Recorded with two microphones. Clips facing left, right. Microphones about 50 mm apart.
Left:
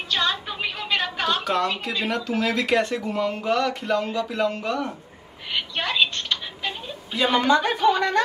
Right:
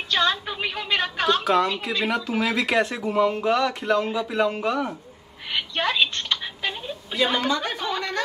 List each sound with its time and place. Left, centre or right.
0.1 s a woman's voice: centre
5.5 s a sound: centre
7.3 s speech: left
7.6 s speech: centre